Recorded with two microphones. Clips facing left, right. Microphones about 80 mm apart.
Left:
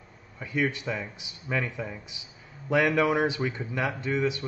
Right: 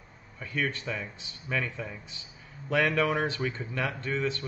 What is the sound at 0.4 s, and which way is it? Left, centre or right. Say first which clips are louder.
Speech: left 4 dB; centre.